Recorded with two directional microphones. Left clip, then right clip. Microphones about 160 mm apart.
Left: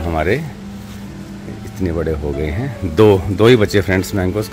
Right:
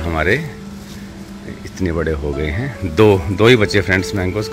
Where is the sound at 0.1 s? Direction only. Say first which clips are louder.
Right 1 dB; 10° left (ahead or behind).